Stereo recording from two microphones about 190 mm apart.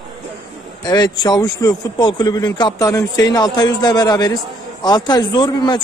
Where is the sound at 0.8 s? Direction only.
20° left (ahead or behind).